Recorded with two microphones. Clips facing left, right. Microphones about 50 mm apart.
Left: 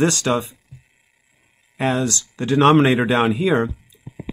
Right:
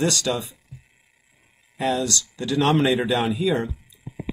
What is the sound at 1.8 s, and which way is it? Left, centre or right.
Speech, left.